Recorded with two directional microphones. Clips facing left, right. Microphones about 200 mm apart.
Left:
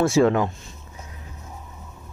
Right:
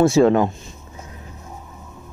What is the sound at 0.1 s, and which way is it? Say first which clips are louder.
Speech: right 4 dB; 35° right (ahead or behind).